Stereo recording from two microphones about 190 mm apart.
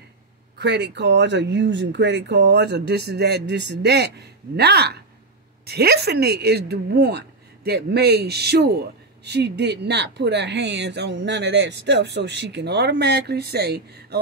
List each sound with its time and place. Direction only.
0.6 s speech: 65° right (ahead or behind)